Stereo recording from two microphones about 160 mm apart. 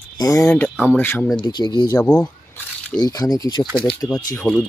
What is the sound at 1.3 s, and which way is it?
Speech, 25° left (ahead or behind).